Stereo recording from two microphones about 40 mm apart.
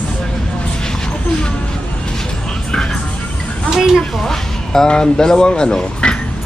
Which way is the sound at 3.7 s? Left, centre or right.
Centre.